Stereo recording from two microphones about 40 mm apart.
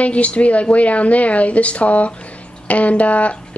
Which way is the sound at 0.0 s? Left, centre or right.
Left.